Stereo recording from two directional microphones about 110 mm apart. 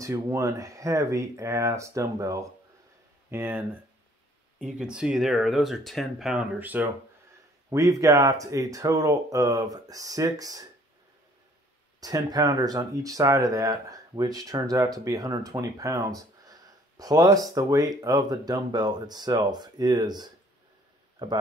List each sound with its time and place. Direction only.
0.0 s speech: 25° right (ahead or behind)
4.6 s speech: 5° right (ahead or behind)
6.6 s speech: 15° right (ahead or behind)
7.7 s speech: 30° right (ahead or behind)
12.0 s speech: 35° right (ahead or behind)